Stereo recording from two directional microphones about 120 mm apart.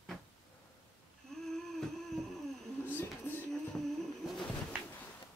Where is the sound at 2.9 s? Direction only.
15° left (ahead or behind).